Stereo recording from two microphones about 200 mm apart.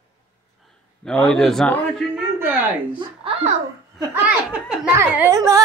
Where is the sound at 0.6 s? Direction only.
Centre (ahead or behind).